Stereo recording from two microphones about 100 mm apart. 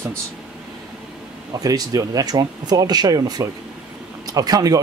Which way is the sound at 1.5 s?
40° right (ahead or behind).